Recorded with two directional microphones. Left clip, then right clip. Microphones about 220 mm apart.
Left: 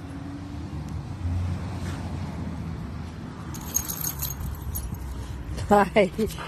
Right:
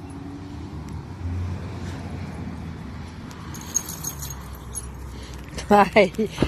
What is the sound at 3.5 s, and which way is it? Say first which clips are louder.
Keys jangling: right 2 dB; 20° left (ahead or behind).